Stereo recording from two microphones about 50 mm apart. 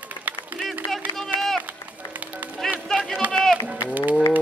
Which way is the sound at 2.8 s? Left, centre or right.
Centre.